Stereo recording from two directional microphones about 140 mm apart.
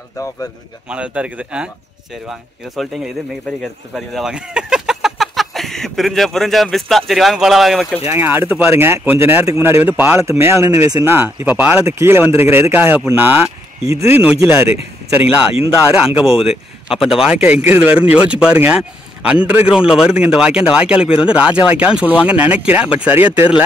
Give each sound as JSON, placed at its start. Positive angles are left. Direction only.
{"t": 0.8, "sound": "speech", "side_deg": -10}
{"t": 8.1, "sound": "speech", "side_deg": -15}
{"t": 16.2, "sound": "speech", "side_deg": 0}